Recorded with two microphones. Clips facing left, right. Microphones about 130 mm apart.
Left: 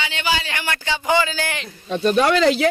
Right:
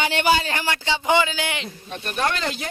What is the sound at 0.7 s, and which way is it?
Speech, 20° right (ahead or behind).